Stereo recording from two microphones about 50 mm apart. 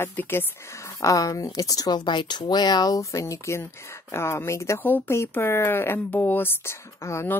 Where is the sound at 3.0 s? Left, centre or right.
Left.